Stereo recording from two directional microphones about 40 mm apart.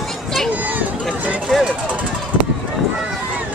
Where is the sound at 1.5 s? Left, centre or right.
Centre.